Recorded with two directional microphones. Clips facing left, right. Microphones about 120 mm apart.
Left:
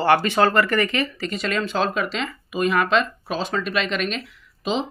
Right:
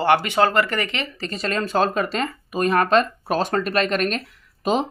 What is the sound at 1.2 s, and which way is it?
Speech, 35° right (ahead or behind).